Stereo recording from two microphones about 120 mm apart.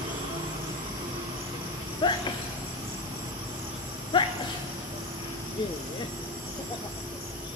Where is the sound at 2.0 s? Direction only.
40° left (ahead or behind).